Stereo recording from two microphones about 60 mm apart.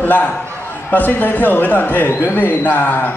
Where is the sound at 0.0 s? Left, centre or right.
Left.